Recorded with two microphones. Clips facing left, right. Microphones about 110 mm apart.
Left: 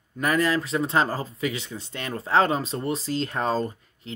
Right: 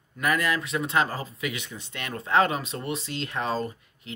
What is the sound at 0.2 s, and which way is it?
Speech, 30° left (ahead or behind).